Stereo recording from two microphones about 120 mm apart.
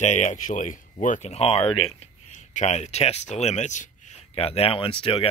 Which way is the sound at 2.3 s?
70° left (ahead or behind).